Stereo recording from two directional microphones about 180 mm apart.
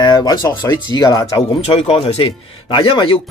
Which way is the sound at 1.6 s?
35° left (ahead or behind).